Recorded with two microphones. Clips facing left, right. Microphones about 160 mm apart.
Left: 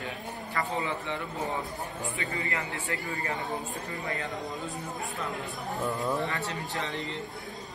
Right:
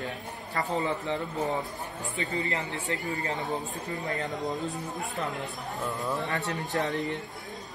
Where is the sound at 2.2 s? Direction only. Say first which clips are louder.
Right 5 dB; 20° right (ahead or behind).